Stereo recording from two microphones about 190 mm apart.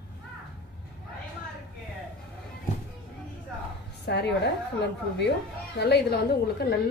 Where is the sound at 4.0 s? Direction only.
60° left (ahead or behind).